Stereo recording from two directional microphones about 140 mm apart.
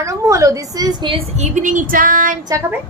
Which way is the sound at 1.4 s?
65° right (ahead or behind).